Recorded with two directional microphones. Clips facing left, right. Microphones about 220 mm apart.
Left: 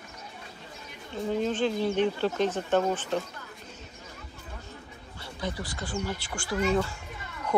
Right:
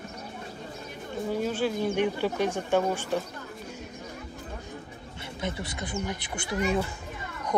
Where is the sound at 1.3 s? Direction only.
10° right (ahead or behind).